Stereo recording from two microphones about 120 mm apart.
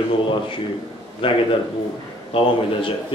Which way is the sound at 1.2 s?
45° left (ahead or behind).